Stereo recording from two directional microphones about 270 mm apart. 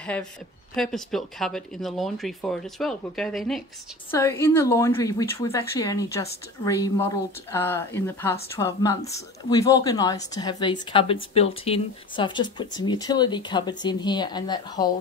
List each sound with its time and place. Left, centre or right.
0.0 s speech: centre